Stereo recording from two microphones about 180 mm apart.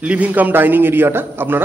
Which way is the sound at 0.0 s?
5° right (ahead or behind).